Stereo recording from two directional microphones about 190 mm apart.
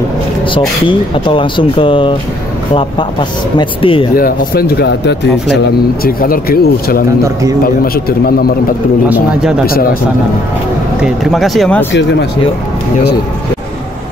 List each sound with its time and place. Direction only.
0.6 s speech: 25° left (ahead or behind)
4.2 s speech: 55° left (ahead or behind)
6.0 s speech: 50° left (ahead or behind)
11.0 s speech: centre (ahead or behind)
11.9 s speech: 65° left (ahead or behind)